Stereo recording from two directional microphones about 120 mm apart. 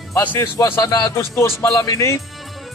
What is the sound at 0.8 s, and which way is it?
Speech, 35° left (ahead or behind).